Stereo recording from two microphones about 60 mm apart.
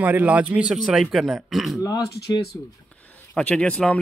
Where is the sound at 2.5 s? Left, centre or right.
Left.